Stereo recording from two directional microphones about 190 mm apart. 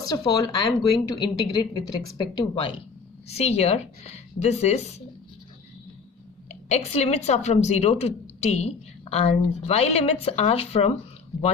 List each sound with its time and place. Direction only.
0.1 s a woman's voice: 20° left (ahead or behind)
6.5 s a woman's voice: 35° left (ahead or behind)